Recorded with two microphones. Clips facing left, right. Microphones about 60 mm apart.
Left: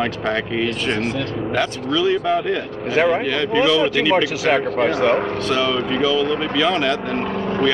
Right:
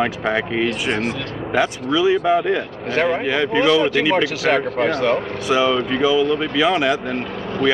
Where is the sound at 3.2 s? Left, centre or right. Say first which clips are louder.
Right 1 dB; centre.